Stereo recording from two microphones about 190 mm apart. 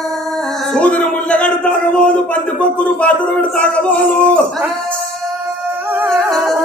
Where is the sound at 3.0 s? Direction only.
5° left (ahead or behind).